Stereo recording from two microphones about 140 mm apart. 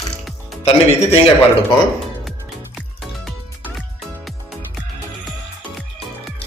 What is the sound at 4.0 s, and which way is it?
Music, centre (ahead or behind).